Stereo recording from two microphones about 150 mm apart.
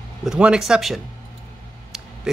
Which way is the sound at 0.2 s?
5° right (ahead or behind).